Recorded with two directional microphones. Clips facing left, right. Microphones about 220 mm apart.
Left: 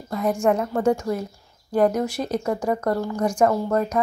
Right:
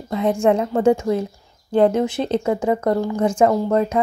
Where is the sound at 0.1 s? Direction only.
25° right (ahead or behind).